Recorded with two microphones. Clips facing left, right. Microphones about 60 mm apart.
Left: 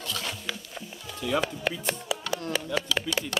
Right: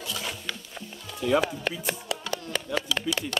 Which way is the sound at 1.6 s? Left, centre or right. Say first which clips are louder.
Left 1 dB; centre.